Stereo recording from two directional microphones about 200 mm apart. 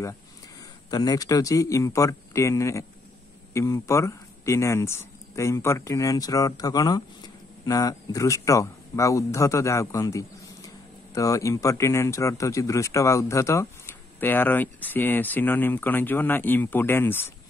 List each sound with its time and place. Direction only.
0.8 s speech: 20° left (ahead or behind)